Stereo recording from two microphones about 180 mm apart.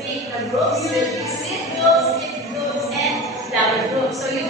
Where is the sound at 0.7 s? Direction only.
Centre (ahead or behind).